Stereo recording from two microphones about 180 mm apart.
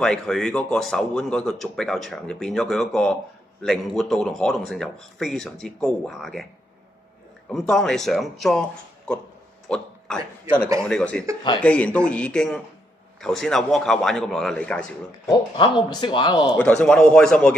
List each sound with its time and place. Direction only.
0.0 s speech: 5° left (ahead or behind)
7.4 s speech: 5° left (ahead or behind)
9.7 s a sound: 5° left (ahead or behind)
10.8 s speech: 5° left (ahead or behind)
15.2 s speech: 25° left (ahead or behind)
16.5 s speech: 5° left (ahead or behind)